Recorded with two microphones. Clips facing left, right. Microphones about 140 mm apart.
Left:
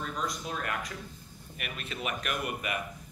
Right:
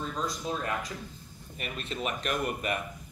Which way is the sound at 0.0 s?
25° right (ahead or behind).